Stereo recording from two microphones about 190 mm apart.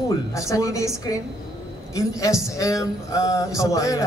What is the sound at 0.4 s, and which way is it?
A man's voice, 15° left (ahead or behind).